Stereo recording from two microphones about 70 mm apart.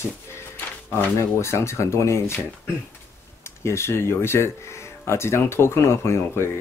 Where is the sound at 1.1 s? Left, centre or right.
Left.